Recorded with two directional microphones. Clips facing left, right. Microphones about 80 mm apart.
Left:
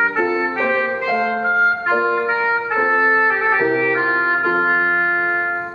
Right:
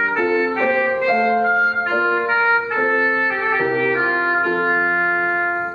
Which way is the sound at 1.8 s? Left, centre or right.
Centre.